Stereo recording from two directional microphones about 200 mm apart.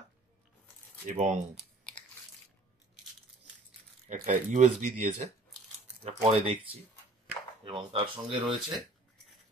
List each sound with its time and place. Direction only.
1.0 s speech: 35° right (ahead or behind)
4.1 s speech: 40° right (ahead or behind)